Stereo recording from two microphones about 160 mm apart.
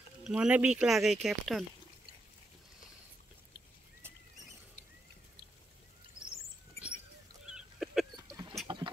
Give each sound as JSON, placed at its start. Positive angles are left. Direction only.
{"t": 0.2, "sound": "speech", "side_deg": -5}
{"t": 7.5, "sound": "a sound", "side_deg": 0}
{"t": 8.6, "sound": "engine", "side_deg": -25}